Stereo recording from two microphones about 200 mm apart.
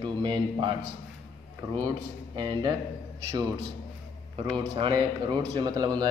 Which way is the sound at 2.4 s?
20° right (ahead or behind).